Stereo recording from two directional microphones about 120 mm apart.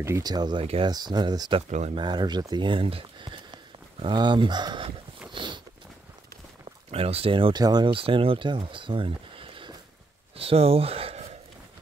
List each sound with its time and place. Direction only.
0.0 s speech: 30° right (ahead or behind)
5.3 s a sound: 40° right (ahead or behind)
6.9 s speech: 55° right (ahead or behind)